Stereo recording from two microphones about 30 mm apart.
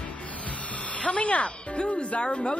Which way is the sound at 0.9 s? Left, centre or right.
Left.